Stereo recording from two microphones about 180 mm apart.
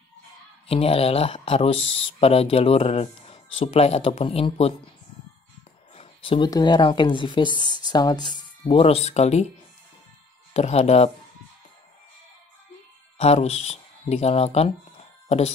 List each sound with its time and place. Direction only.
0.7 s speech: 35° left (ahead or behind)
5.9 s speech: 30° left (ahead or behind)
10.5 s speech: 35° left (ahead or behind)
13.2 s speech: 35° left (ahead or behind)